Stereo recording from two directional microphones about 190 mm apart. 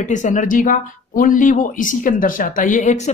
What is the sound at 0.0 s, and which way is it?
Speech, 40° left (ahead or behind).